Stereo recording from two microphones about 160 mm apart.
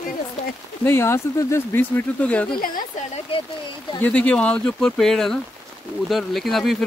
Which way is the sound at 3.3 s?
35° left (ahead or behind).